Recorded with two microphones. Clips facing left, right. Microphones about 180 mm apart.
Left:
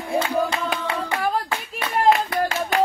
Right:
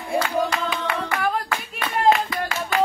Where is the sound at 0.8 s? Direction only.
30° left (ahead or behind).